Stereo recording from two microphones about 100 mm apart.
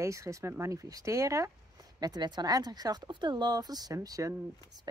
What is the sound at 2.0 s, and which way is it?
Speech, 45° right (ahead or behind).